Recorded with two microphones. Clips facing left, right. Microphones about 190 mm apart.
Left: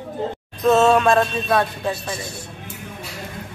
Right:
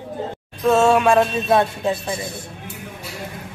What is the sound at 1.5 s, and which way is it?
Speech, 25° right (ahead or behind).